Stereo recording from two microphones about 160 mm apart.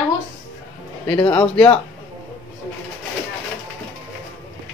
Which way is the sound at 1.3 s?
10° left (ahead or behind).